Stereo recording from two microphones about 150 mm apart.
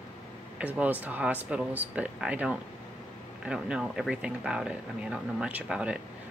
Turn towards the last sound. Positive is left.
turn(degrees=-5)  # may be behind; listen again after turning